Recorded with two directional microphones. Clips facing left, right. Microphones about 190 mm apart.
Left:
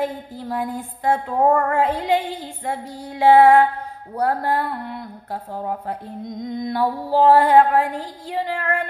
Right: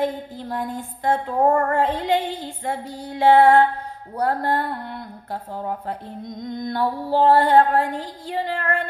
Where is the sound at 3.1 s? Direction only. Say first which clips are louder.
Left 2 dB; 10° left (ahead or behind).